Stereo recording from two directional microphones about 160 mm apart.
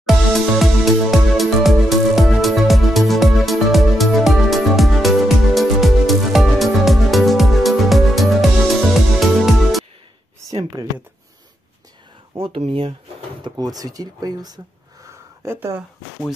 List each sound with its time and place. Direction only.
0.0 s music: centre (ahead or behind)
10.5 s a sound: 25° right (ahead or behind)
12.4 s speech: 35° right (ahead or behind)
13.4 s speech: 25° right (ahead or behind)